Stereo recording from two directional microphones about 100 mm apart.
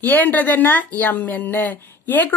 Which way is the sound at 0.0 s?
15° left (ahead or behind).